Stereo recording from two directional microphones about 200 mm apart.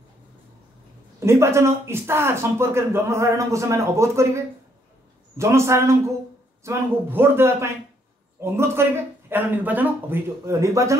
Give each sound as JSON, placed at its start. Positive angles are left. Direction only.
{"t": 1.2, "sound": "speech", "side_deg": -15}
{"t": 5.4, "sound": "speech", "side_deg": -15}